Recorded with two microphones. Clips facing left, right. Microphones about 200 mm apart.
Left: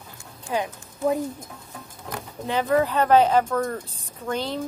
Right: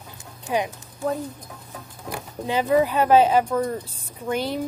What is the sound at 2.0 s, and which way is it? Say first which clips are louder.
Speech: right 2 dB; 15° right (ahead or behind).